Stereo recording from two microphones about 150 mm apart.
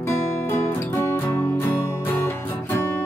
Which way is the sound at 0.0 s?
20° left (ahead or behind).